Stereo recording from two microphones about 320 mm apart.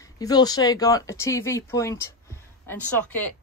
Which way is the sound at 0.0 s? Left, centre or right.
Centre.